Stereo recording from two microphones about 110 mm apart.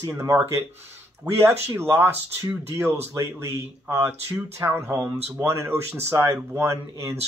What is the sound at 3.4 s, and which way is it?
Speech, 25° right (ahead or behind).